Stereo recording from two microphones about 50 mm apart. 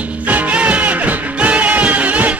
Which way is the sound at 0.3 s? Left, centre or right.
Right.